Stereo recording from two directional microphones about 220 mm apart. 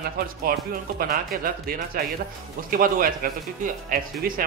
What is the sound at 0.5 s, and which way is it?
Speech, 45° right (ahead or behind).